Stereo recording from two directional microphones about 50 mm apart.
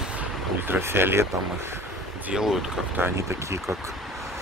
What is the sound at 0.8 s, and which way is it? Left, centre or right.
Speech, right.